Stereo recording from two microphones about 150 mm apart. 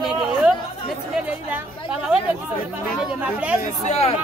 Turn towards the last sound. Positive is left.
turn(degrees=45)  # may be behind; listen again after turning